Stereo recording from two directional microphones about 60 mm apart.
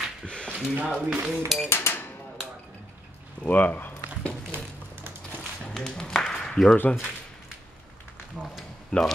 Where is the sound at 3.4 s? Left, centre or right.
Left.